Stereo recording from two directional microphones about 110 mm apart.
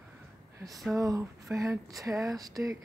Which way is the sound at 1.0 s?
30° right (ahead or behind).